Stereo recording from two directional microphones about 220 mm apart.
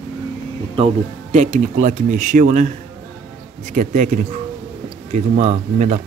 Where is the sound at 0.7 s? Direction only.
30° right (ahead or behind).